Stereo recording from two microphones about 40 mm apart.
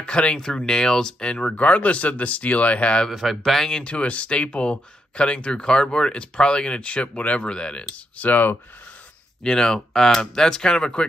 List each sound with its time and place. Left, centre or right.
0.0 s speech: left
3.1 s speech: centre
3.4 s speech: centre
3.8 s speech: left
7.9 s speech: left
9.4 s speech: centre